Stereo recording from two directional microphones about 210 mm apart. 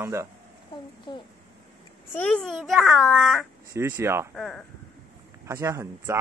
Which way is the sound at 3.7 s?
10° right (ahead or behind).